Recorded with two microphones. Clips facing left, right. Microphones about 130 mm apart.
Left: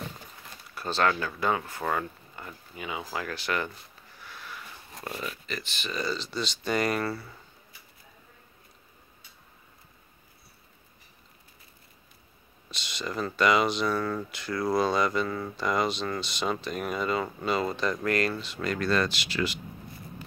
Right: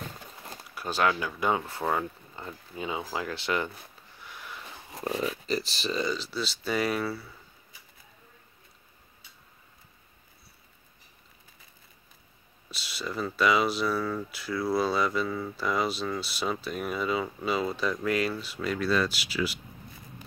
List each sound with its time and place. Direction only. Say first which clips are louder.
0.7 s speech: even; 10° right (ahead or behind)
4.2 s a sound: even; 20° right (ahead or behind)
5.0 s speech: right 6 dB; 30° right (ahead or behind)
6.1 s speech: even; 5° right (ahead or behind)
12.7 s speech: left 1 dB; 5° right (ahead or behind)